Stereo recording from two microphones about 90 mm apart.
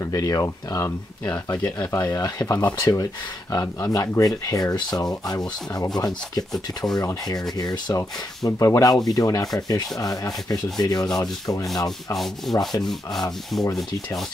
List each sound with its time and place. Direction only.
0.0 s speech: 40° left (ahead or behind)
1.8 s rub: 45° left (ahead or behind)
3.8 s speech: 40° left (ahead or behind)
5.1 s rub: 45° left (ahead or behind)
8.5 s speech: 40° left (ahead or behind)
9.6 s rub: 45° left (ahead or behind)
12.5 s rub: 5° left (ahead or behind)